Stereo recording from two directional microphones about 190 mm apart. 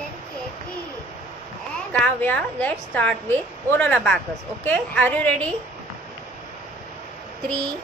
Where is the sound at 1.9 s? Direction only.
5° left (ahead or behind).